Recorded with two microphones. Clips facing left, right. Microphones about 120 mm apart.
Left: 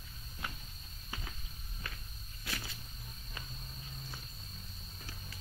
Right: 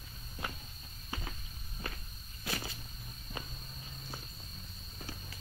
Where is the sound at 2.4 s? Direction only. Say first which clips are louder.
Right 4 dB; 30° right (ahead or behind).